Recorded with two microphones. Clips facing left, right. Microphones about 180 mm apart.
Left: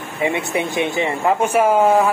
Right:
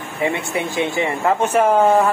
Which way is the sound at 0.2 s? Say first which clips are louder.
Left 1 dB; 20° left (ahead or behind).